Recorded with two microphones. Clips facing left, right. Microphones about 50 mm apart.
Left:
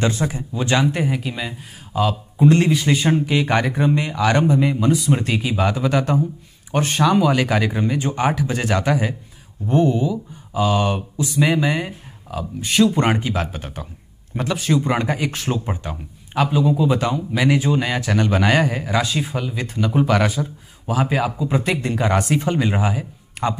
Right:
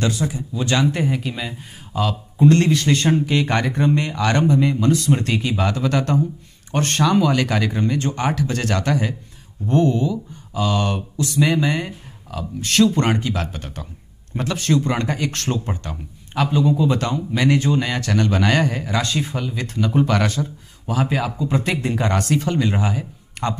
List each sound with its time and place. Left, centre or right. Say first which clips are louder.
0.1 s speech: even; left
0.6 s speech: left 1 dB; centre
0.9 s speech: even; centre
22.1 s speech: left 1 dB; centre